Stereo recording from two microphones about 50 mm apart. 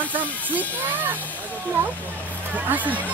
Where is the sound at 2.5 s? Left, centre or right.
Right.